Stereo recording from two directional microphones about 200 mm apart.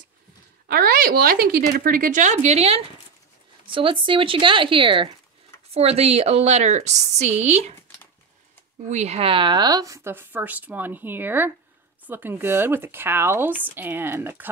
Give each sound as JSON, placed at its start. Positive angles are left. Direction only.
{"t": 0.7, "sound": "a woman's voice", "side_deg": -45}
{"t": 8.8, "sound": "speech", "side_deg": -35}